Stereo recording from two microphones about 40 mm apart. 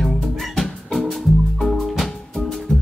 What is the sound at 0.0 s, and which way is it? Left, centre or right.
Music, centre.